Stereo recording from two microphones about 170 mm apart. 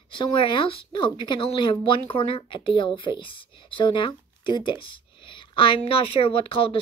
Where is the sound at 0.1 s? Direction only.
30° left (ahead or behind).